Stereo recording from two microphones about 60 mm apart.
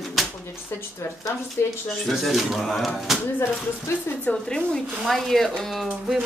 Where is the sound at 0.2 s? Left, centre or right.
Centre.